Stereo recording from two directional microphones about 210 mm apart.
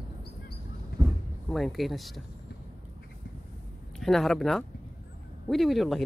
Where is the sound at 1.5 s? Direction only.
Centre (ahead or behind).